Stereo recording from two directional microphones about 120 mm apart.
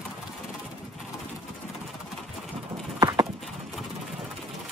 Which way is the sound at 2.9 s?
30° right (ahead or behind).